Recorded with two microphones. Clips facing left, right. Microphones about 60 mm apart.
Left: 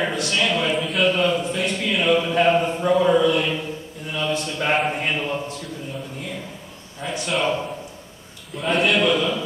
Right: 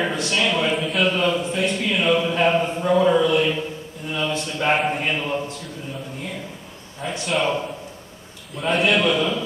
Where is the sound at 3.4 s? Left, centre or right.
Centre.